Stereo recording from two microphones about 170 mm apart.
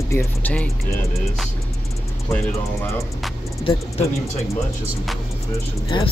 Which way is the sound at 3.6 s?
30° left (ahead or behind).